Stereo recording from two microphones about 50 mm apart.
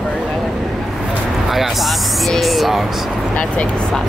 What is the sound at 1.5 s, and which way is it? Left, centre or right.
Speech, centre.